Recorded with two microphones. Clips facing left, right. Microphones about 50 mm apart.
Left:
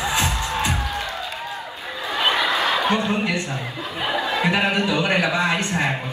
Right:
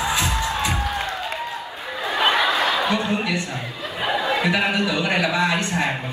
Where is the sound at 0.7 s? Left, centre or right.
Right.